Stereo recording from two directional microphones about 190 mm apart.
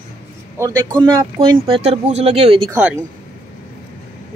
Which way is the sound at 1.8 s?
35° right (ahead or behind).